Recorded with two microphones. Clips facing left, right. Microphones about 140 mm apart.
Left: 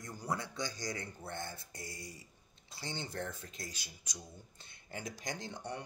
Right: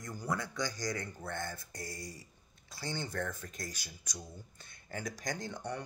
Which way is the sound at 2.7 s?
25° left (ahead or behind).